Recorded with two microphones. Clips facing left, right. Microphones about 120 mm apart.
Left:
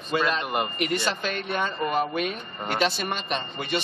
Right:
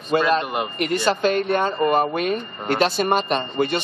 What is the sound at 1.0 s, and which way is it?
Speech, 45° right (ahead or behind).